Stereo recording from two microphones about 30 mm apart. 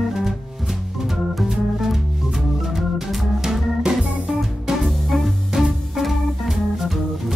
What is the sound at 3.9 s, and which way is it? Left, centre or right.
Music, right.